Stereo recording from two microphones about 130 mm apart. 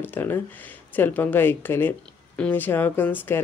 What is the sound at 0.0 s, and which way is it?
Speech, 15° left (ahead or behind).